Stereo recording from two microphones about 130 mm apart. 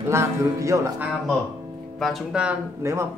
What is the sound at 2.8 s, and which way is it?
Speech, 20° right (ahead or behind).